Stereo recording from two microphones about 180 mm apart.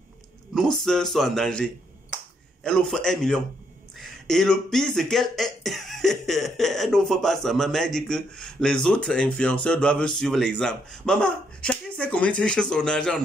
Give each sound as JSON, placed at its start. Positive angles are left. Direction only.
{"t": 0.6, "sound": "speech", "side_deg": 5}